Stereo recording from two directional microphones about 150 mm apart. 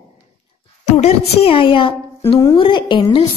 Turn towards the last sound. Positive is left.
turn(degrees=30)  # may be behind; listen again after turning